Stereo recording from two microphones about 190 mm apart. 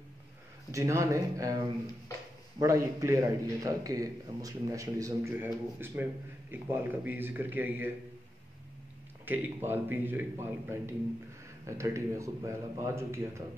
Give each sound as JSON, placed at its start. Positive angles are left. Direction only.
{"t": 0.7, "sound": "a man's voice", "side_deg": -15}
{"t": 2.6, "sound": "a man's voice", "side_deg": -15}
{"t": 9.2, "sound": "a man's voice", "side_deg": -10}